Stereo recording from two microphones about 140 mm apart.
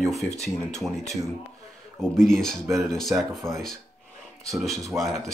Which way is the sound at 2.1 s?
5° left (ahead or behind).